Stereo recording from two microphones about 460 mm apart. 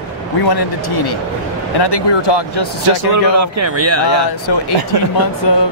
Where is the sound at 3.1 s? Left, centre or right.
Right.